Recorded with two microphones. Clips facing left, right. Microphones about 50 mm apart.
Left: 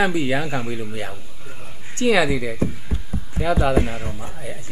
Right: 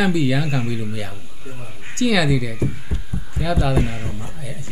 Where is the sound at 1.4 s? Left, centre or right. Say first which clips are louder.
Right 5 dB; centre.